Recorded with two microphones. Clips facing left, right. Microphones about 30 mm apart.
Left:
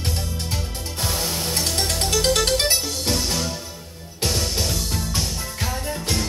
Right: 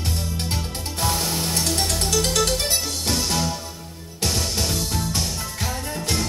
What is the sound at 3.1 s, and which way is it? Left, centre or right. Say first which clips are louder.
Music: right 1 dB; centre.